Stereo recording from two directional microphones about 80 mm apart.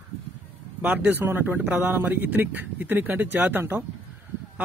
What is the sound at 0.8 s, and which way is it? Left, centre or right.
A man's voice, right.